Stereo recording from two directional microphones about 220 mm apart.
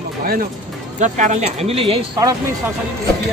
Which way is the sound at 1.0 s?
35° right (ahead or behind).